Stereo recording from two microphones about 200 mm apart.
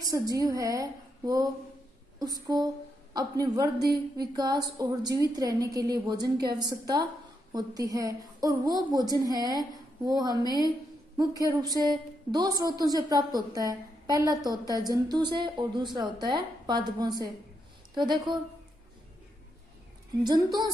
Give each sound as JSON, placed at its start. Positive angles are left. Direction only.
{"t": 0.0, "sound": "a woman's voice", "side_deg": -20}
{"t": 20.2, "sound": "a woman's voice", "side_deg": -20}